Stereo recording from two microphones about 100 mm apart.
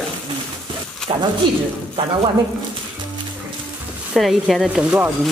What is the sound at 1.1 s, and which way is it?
Speech, 45° right (ahead or behind).